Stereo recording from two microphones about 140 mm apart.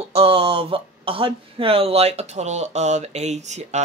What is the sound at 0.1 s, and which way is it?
Speech, 45° right (ahead or behind).